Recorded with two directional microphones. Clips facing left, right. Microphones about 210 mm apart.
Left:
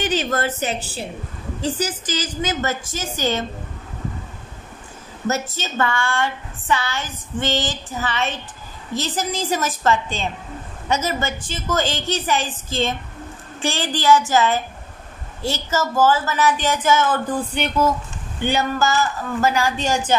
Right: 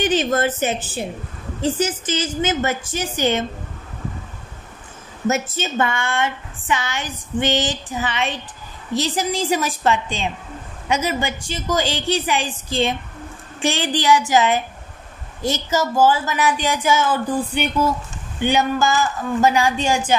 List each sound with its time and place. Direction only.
0.3 s a woman's voice: 20° right (ahead or behind)
5.3 s a woman's voice: 15° right (ahead or behind)